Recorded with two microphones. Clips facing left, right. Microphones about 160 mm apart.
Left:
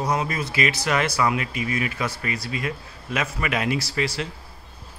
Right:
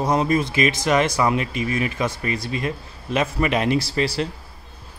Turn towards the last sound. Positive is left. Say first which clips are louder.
# right 4 dB
turn(degrees=-35)  # may be behind; listen again after turning